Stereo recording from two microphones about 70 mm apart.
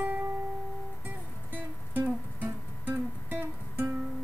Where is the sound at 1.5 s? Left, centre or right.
Right.